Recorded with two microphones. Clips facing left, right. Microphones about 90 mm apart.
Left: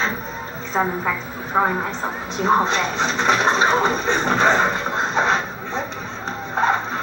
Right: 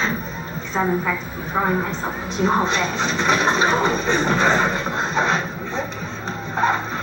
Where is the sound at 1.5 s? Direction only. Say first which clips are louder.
Left 1 dB; 35° left (ahead or behind).